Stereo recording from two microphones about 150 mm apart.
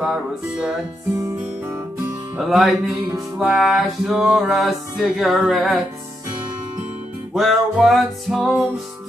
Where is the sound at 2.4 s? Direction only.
Centre (ahead or behind).